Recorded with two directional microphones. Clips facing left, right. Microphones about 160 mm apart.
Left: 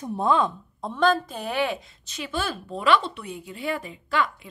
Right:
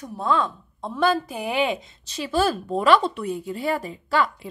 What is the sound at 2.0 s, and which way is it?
A woman's voice, 35° right (ahead or behind).